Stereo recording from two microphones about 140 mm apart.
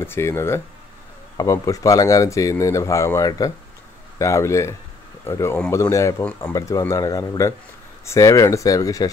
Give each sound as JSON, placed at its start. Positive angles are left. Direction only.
{"t": 0.0, "sound": "speech", "side_deg": 15}